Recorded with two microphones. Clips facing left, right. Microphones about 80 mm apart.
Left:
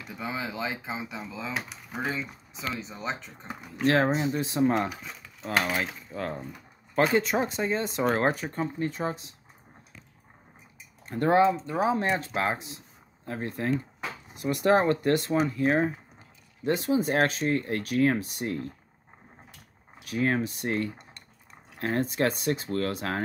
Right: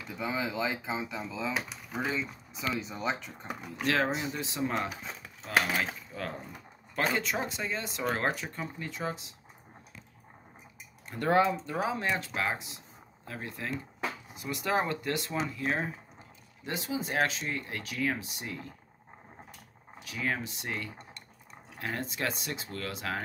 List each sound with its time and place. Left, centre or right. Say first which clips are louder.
0.1 s speech: right 1 dB; centre
2.5 s speech: right 1 dB; centre
3.8 s speech: left 6 dB; left
5.8 s speech: left 2 dB; left
7.2 s speech: left 7 dB; left
11.2 s speech: left 4 dB; left
11.8 s speech: left 6 dB; left
15.6 s speech: left 8 dB; left
16.6 s speech: left 9 dB; left
20.1 s speech: left 7 dB; left